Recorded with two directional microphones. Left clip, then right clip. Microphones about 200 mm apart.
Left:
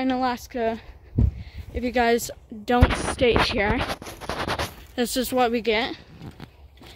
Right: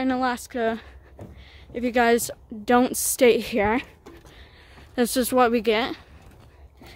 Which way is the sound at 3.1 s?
35° right (ahead or behind).